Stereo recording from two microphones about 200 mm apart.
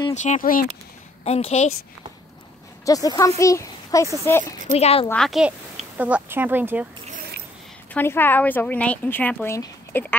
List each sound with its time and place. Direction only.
0.1 s speech: 35° left (ahead or behind)
1.2 s speech: 30° left (ahead or behind)
2.8 s speech: 15° left (ahead or behind)
4.7 s speech: 30° left (ahead or behind)
5.0 s speech: 5° left (ahead or behind)
7.9 s speech: 10° left (ahead or behind)